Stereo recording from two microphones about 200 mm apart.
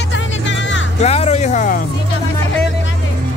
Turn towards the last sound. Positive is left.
turn(degrees=40)  # may be behind; listen again after turning